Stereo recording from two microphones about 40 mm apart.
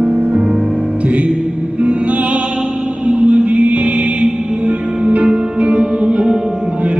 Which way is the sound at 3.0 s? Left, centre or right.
Right.